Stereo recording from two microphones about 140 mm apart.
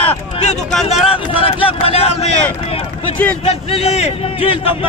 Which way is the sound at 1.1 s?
40° left (ahead or behind).